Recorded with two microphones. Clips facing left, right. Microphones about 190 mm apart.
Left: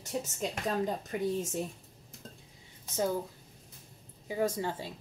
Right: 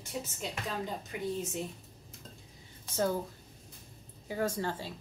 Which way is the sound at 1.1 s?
45° left (ahead or behind).